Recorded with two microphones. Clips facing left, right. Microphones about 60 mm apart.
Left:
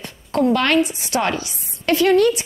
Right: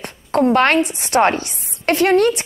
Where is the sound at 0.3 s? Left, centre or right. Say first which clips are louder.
Right 3 dB; right.